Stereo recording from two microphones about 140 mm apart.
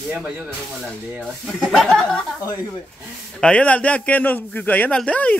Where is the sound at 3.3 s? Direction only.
10° left (ahead or behind).